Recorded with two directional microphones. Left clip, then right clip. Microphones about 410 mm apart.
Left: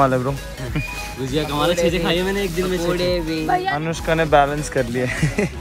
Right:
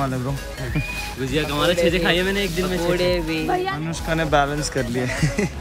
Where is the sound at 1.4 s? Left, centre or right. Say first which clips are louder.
Left 1 dB; centre.